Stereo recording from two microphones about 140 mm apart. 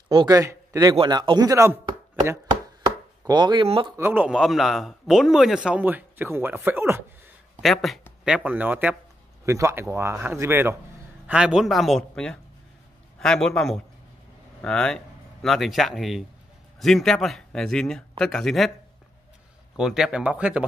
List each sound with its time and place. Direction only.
0.1 s speech: 30° right (ahead or behind)
3.3 s speech: 30° right (ahead or behind)
3.9 s speech: 15° right (ahead or behind)
4.3 s speech: centre (ahead or behind)
7.6 s a man's voice: centre (ahead or behind); by 10.8 s 20° right (ahead or behind)
11.2 s a man's voice: 5° right (ahead or behind)
19.8 s speech: 5° right (ahead or behind)